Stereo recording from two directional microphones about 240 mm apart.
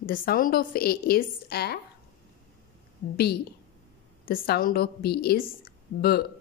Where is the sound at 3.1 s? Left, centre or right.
Left.